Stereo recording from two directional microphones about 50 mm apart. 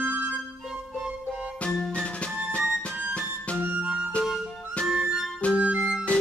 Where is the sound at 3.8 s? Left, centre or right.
Centre.